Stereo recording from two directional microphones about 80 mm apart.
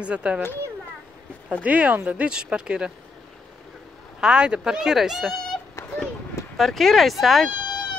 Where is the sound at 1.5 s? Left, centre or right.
Centre.